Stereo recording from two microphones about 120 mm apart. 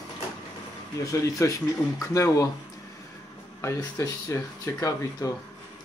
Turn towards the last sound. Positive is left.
turn(degrees=25)  # may be behind; listen again after turning